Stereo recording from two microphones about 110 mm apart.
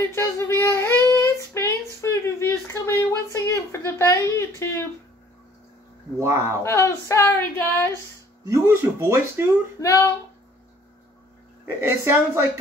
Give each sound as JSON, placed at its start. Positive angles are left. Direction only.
{"t": 0.1, "sound": "a sound", "side_deg": 20}
{"t": 6.1, "sound": "a woman's voice", "side_deg": -25}
{"t": 6.6, "sound": "speech", "side_deg": 25}
{"t": 8.8, "sound": "a woman's voice", "side_deg": -20}
{"t": 9.8, "sound": "speech", "side_deg": 25}
{"t": 11.6, "sound": "a woman's voice", "side_deg": -25}